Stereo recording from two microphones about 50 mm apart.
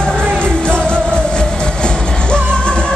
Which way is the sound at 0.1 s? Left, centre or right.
Right.